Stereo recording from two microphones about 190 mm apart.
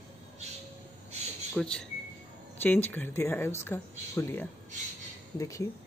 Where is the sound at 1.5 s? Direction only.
5° left (ahead or behind).